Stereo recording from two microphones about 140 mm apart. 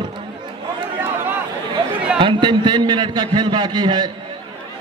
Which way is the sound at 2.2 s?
35° right (ahead or behind).